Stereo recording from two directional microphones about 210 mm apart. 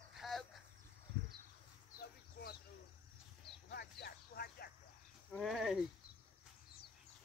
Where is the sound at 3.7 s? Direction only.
50° left (ahead or behind).